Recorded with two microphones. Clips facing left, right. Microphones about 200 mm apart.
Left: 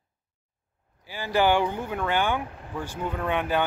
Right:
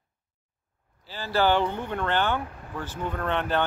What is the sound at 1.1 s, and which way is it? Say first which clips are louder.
Speech: left 1 dB; 15° left (ahead or behind).